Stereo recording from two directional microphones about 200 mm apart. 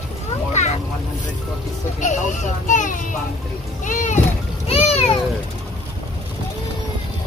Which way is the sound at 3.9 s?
40° left (ahead or behind).